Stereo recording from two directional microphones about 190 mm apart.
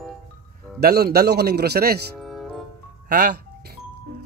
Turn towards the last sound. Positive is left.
turn(degrees=-55)  # may be behind; listen again after turning